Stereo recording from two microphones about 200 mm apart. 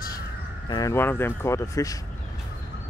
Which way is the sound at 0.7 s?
20° left (ahead or behind).